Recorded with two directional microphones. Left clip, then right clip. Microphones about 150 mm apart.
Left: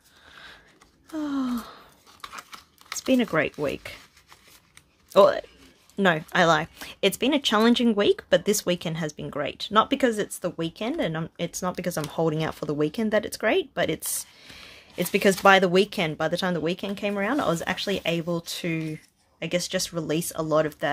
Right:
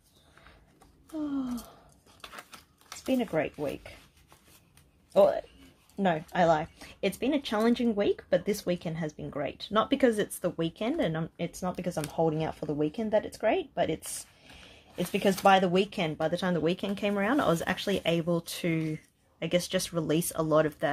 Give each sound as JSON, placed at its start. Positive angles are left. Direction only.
{"t": 1.1, "sound": "gasp", "side_deg": 40}
{"t": 2.3, "sound": "a sound", "side_deg": 15}
{"t": 3.1, "sound": "speech", "side_deg": 45}
{"t": 5.1, "sound": "speech", "side_deg": 45}
{"t": 11.3, "sound": "speech", "side_deg": 25}